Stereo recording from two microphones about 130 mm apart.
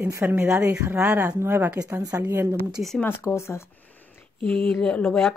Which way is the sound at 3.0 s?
20° left (ahead or behind).